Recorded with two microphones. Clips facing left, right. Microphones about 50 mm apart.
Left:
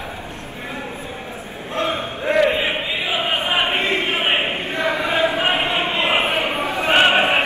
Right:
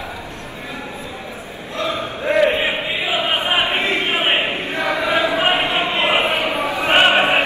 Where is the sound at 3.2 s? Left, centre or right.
Right.